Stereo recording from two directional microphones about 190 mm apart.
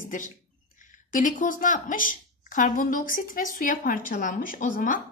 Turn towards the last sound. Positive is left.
turn(degrees=45)  # may be behind; listen again after turning